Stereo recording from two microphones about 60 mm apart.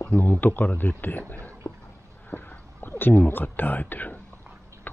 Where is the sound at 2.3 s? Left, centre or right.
Left.